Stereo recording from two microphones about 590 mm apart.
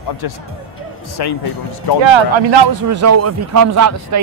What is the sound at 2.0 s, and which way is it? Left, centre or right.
Speech, right.